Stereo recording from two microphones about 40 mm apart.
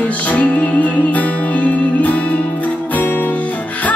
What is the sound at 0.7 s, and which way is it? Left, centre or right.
Music, left.